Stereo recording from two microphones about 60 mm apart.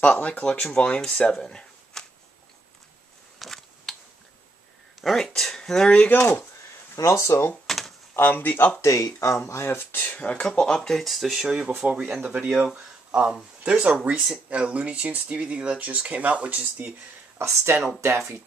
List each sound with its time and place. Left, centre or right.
0.2 s speech: centre
1.3 s a sound: centre
3.3 s a sound: centre
5.0 s speech: centre
7.0 s speech: left
7.6 s drawer open or close: centre
8.2 s speech: left
8.8 s speech: left
9.5 s speech: left
9.9 s speech: left
10.4 s speech: centre
14.1 s speech: centre
14.5 s speech: right
17.4 s speech: right